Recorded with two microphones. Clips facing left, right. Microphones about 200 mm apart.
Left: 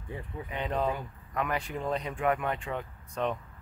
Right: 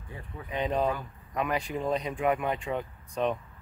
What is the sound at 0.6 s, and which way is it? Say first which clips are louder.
Speech: right 3 dB; 15° right (ahead or behind).